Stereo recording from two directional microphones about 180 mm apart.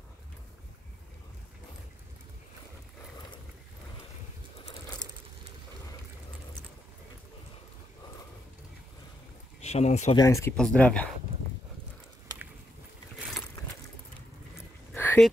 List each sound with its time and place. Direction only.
9.6 s speech: 35° left (ahead or behind)
10.1 s speech: 15° left (ahead or behind)
10.5 s speech: 5° left (ahead or behind)
15.0 s a sound: 10° left (ahead or behind)